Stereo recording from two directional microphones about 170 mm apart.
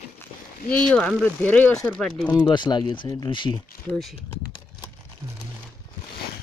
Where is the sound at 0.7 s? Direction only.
5° left (ahead or behind).